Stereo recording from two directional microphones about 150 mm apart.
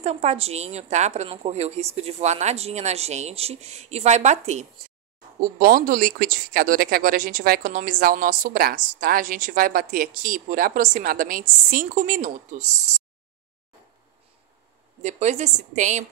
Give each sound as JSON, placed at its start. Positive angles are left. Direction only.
{"t": 0.0, "sound": "a woman's voice", "side_deg": -50}
{"t": 5.6, "sound": "speech", "side_deg": -70}
{"t": 11.7, "sound": "speech", "side_deg": -60}
{"t": 15.0, "sound": "a woman's voice", "side_deg": -50}